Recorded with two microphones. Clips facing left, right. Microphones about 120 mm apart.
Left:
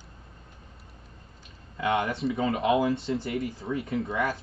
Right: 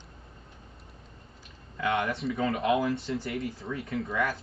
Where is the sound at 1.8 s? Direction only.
25° left (ahead or behind).